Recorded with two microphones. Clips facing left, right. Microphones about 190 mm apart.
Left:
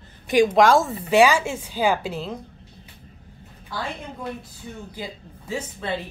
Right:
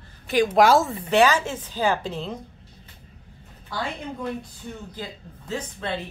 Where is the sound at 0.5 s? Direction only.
5° right (ahead or behind).